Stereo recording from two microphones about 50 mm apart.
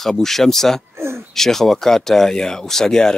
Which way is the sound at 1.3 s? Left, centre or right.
Centre.